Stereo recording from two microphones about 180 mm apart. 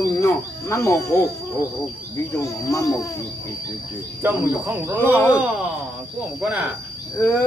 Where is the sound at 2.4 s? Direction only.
15° left (ahead or behind).